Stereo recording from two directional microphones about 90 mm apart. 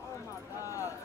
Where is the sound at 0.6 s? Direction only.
35° left (ahead or behind).